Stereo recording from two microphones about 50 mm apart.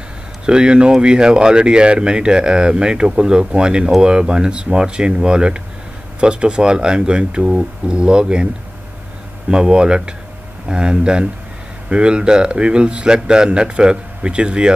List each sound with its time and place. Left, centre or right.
0.5 s speech: centre
9.5 s speech: centre